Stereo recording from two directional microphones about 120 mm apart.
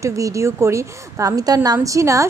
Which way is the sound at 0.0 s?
25° right (ahead or behind).